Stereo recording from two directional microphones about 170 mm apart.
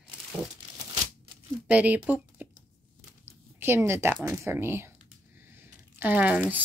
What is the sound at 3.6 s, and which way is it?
Speech, 15° right (ahead or behind).